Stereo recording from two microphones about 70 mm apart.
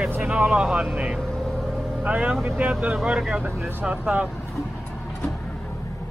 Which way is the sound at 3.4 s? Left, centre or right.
Centre.